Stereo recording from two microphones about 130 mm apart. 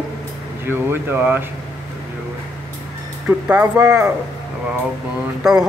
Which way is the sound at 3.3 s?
10° right (ahead or behind).